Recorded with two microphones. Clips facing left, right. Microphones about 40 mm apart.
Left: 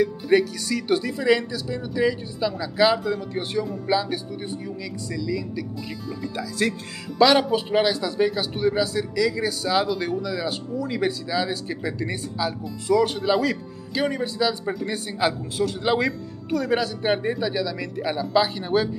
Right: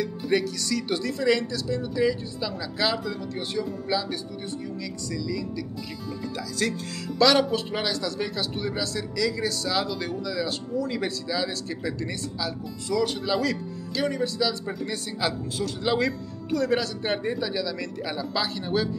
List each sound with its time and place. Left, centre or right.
0.0 s speech: centre
7.2 s speech: centre